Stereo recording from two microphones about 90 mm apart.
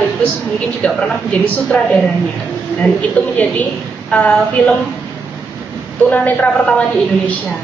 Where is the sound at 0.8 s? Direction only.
15° left (ahead or behind).